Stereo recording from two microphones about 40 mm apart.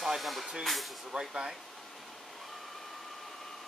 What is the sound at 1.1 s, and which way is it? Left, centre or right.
Speech, right.